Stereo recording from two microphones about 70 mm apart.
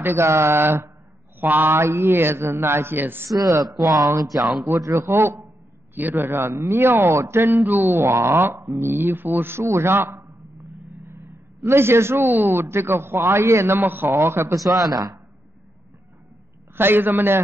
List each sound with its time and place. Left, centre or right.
0.0 s a man's voice: right
3.3 s speech: right
3.8 s speech: right
4.6 s a man's voice: right
13.7 s a man's voice: right
14.8 s speech: right
16.7 s a man's voice: right